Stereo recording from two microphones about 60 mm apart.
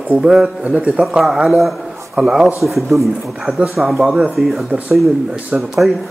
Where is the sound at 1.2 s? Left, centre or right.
Centre.